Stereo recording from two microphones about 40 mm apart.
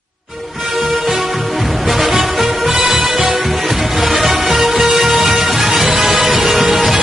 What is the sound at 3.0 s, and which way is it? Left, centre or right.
Music, right.